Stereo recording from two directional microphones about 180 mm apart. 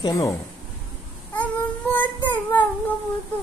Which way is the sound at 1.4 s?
10° left (ahead or behind).